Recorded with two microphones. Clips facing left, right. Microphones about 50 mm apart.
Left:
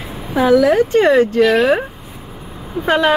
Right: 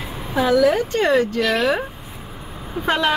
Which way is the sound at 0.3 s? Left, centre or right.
Left.